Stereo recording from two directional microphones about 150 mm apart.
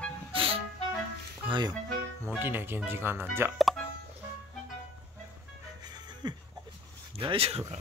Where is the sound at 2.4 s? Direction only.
15° right (ahead or behind).